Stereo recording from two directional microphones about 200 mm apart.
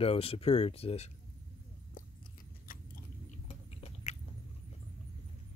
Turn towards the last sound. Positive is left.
turn(degrees=35)  # may be behind; listen again after turning